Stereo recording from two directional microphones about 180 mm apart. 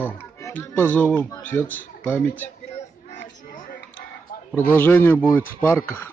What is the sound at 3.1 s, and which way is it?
Music, 45° left (ahead or behind).